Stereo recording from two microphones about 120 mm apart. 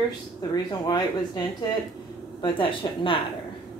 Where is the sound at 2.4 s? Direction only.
45° left (ahead or behind).